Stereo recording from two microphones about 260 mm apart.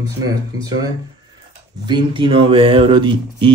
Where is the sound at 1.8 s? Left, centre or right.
Centre.